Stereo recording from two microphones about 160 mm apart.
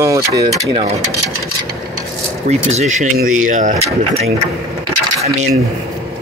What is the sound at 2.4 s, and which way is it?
Speech, 45° right (ahead or behind).